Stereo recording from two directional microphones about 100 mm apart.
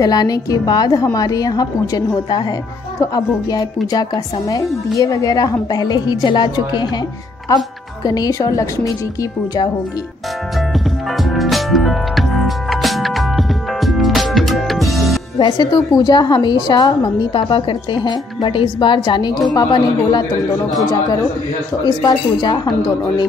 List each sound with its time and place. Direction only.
0.0 s a woman's voice: 40° left (ahead or behind)
11.2 s music: centre (ahead or behind)
15.3 s speech: 45° left (ahead or behind)
17.3 s speech: 60° left (ahead or behind); by 20.2 s 40° left (ahead or behind)
22.0 s speech: 45° left (ahead or behind)